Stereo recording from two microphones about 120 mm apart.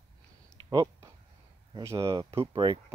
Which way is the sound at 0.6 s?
40° right (ahead or behind).